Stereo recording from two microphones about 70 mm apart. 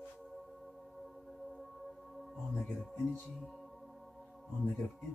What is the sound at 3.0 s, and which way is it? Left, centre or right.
Speech, centre.